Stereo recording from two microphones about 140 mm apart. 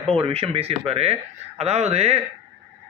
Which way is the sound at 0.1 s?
45° right (ahead or behind).